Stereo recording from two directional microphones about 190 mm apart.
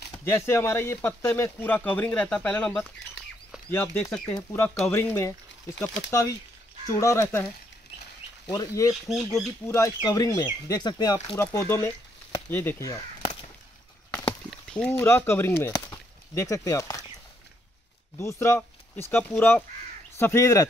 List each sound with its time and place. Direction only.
0.1 s speech: 15° left (ahead or behind)
8.5 s speech: 15° left (ahead or behind)
14.7 s speech: 10° left (ahead or behind)
18.1 s speech: 15° left (ahead or behind)